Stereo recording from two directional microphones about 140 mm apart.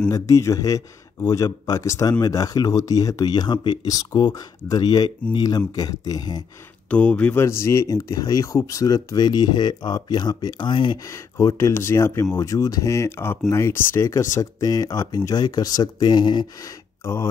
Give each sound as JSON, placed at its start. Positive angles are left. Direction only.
{"t": 0.1, "sound": "speech", "side_deg": 25}
{"t": 6.9, "sound": "speech", "side_deg": 10}
{"t": 11.1, "sound": "speech", "side_deg": 20}
{"t": 17.0, "sound": "speech", "side_deg": 20}